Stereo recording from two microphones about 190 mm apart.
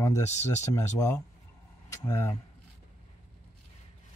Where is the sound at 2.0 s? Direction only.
15° left (ahead or behind).